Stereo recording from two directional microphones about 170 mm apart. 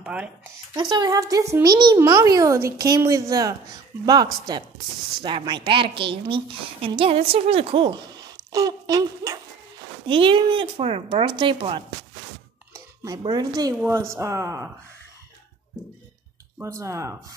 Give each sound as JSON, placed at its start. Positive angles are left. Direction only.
{"t": 0.0, "sound": "speech", "side_deg": -5}
{"t": 0.7, "sound": "a woman's voice", "side_deg": -25}
{"t": 10.0, "sound": "speech", "side_deg": -30}
{"t": 13.0, "sound": "a woman's voice", "side_deg": -25}
{"t": 16.5, "sound": "speech", "side_deg": -15}